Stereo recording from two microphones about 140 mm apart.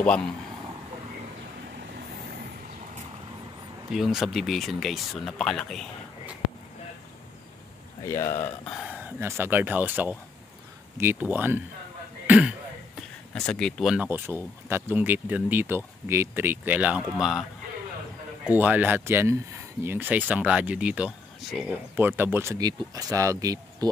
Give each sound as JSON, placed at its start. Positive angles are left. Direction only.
{"t": 3.9, "sound": "speech", "side_deg": 0}
{"t": 8.0, "sound": "speech", "side_deg": 20}
{"t": 8.6, "sound": "speech", "side_deg": 0}
{"t": 8.9, "sound": "speech", "side_deg": -15}
{"t": 12.3, "sound": "throat clearing", "side_deg": -5}
{"t": 13.3, "sound": "speech", "side_deg": 5}
{"t": 13.9, "sound": "speech", "side_deg": -15}